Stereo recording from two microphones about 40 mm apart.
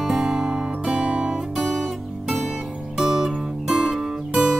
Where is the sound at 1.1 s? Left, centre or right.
Right.